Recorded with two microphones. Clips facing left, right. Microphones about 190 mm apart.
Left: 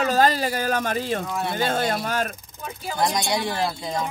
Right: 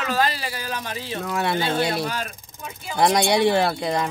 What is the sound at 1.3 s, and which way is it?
Speech, 80° right.